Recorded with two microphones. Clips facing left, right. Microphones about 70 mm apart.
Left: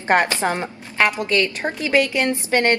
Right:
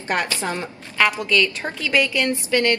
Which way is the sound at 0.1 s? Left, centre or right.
Left.